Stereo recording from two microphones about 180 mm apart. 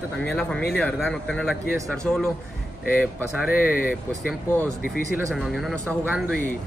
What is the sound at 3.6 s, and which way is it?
Speech, 50° left (ahead or behind).